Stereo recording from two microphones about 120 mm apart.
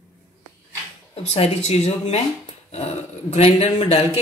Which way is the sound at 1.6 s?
70° left (ahead or behind).